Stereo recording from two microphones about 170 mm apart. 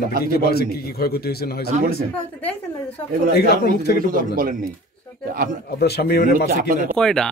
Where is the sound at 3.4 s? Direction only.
70° left (ahead or behind).